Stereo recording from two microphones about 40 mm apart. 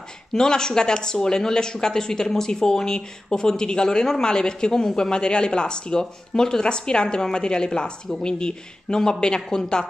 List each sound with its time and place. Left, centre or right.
0.3 s speech: centre